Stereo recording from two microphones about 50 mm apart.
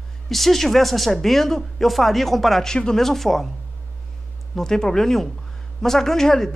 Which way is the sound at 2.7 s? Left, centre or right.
Centre.